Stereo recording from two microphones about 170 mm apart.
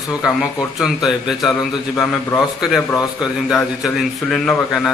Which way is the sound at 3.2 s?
Centre (ahead or behind).